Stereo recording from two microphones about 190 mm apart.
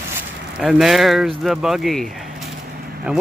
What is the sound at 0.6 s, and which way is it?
Speech, 5° right (ahead or behind).